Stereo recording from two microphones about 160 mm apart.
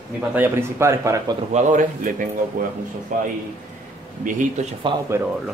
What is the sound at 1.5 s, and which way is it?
Speech, 50° right (ahead or behind).